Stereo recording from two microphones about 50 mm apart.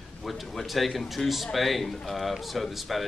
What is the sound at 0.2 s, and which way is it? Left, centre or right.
A man's voice, centre.